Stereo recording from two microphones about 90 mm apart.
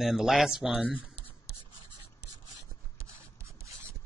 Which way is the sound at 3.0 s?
35° right (ahead or behind).